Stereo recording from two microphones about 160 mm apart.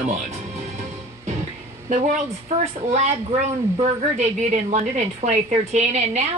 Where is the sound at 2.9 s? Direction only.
45° right (ahead or behind).